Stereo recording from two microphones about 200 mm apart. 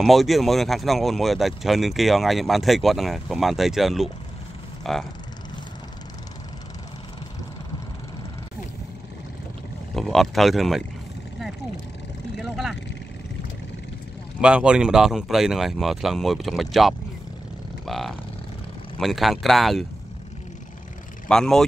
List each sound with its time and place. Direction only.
0.0 s speech: centre (ahead or behind)
9.9 s speech: centre (ahead or behind)
12.4 s vehicle: centre (ahead or behind)
14.4 s speech: 5° right (ahead or behind)
21.3 s speech: 5° left (ahead or behind)